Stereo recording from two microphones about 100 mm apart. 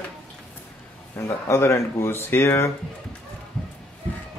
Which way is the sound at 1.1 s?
25° left (ahead or behind).